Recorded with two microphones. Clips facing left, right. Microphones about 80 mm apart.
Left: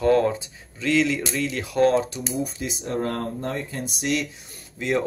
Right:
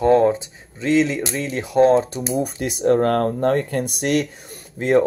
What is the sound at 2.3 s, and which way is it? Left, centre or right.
Speech, right.